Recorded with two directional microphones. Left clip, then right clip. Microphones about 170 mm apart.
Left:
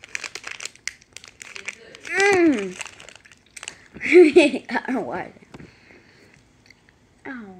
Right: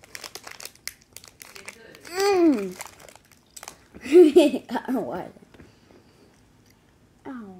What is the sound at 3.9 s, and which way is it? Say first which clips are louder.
Speech: left 2 dB; 5° right (ahead or behind).